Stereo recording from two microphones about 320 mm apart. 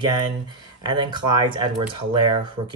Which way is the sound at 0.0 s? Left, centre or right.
Centre.